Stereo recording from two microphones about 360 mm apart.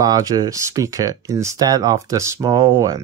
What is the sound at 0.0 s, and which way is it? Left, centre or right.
Speech, centre.